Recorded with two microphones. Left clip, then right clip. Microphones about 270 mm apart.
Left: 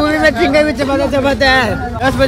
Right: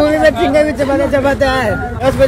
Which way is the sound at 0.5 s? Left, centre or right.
Left.